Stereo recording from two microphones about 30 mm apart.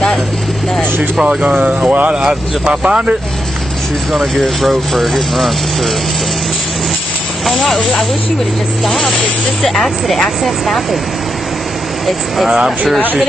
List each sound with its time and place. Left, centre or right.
1.9 s speech: right
2.2 s speech: right
4.1 s speech: centre
7.4 s speech: centre
8.8 s speech: centre